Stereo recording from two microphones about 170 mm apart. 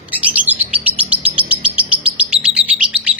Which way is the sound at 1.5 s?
10° right (ahead or behind).